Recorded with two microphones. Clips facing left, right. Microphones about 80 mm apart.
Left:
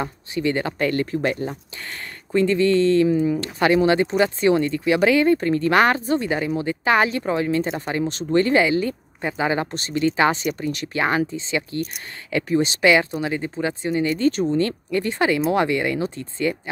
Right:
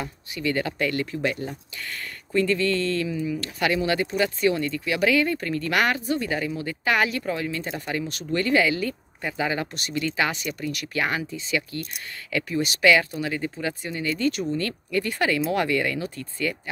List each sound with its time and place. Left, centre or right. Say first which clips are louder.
0.0 s speech: left 5 dB; left
1.9 s speech: left 5 dB; left
3.1 s speech: left 8 dB; left
3.3 s speech: left 6 dB; left